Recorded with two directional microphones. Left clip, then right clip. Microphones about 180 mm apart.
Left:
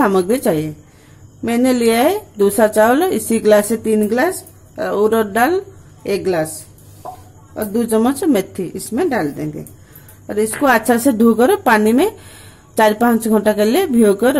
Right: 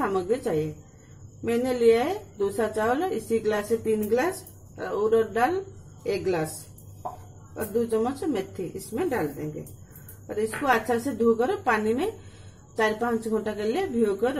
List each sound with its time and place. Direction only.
0.0 s a woman's voice: 50° left (ahead or behind)
7.5 s a woman's voice: 50° left (ahead or behind)